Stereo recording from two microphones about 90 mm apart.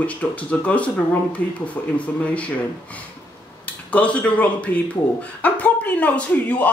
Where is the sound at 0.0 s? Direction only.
15° left (ahead or behind).